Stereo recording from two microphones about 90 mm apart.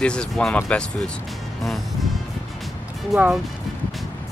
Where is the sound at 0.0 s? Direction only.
10° left (ahead or behind).